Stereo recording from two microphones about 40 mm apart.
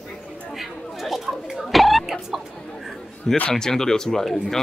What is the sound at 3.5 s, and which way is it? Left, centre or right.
Speech, centre.